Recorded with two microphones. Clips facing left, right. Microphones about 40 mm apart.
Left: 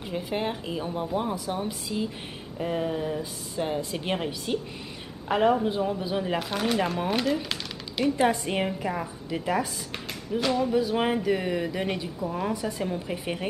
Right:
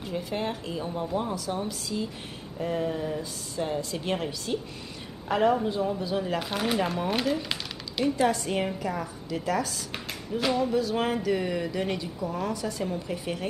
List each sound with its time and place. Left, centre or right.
0.1 s a woman's voice: centre
6.5 s speech: centre
8.2 s speech: left
10.4 s speech: centre
10.7 s a woman's voice: centre